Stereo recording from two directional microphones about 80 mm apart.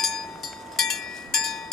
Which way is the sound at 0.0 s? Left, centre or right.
Centre.